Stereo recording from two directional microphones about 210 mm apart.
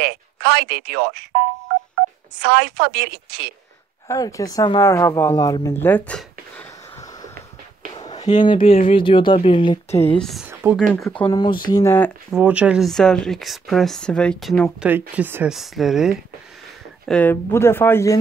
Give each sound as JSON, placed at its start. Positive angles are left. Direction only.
{"t": 0.0, "sound": "speech", "side_deg": -45}
{"t": 2.4, "sound": "a woman's voice", "side_deg": -50}
{"t": 4.1, "sound": "speech", "side_deg": 15}
{"t": 7.9, "sound": "a sound", "side_deg": 20}
{"t": 8.2, "sound": "speech", "side_deg": 35}
{"t": 8.9, "sound": "speech", "side_deg": 25}
{"t": 10.1, "sound": "speech", "side_deg": 0}
{"t": 10.6, "sound": "speech", "side_deg": -10}
{"t": 11.1, "sound": "speech", "side_deg": 15}
{"t": 12.3, "sound": "speech", "side_deg": -5}
{"t": 17.1, "sound": "speech", "side_deg": 10}